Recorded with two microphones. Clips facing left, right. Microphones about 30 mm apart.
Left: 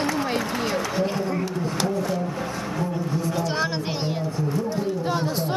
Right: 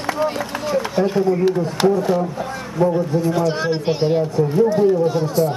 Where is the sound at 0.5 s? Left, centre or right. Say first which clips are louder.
Right 4 dB; centre.